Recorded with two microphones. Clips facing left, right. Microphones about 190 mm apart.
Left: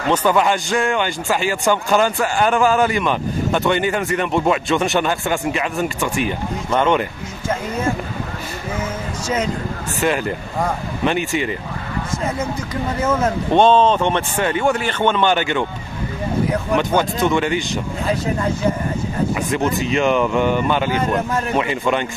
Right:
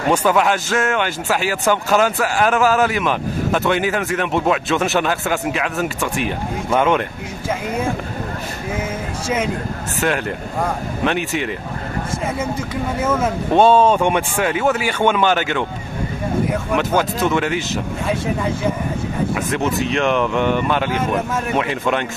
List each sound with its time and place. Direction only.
0.1 s a man's voice: 5° right (ahead or behind)
9.9 s a man's voice: centre (ahead or behind)
13.0 s a man's voice: 5° right (ahead or behind)